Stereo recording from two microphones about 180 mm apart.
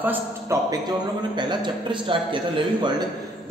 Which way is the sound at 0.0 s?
15° right (ahead or behind).